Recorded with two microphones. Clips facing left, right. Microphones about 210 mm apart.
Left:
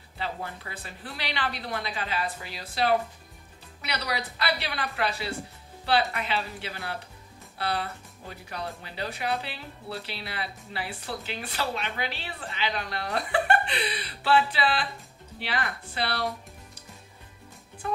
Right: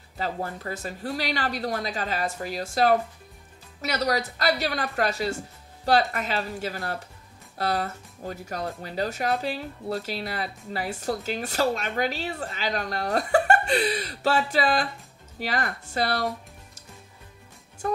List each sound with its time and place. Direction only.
0.2 s speech: 40° right (ahead or behind)
17.8 s music: 45° right (ahead or behind)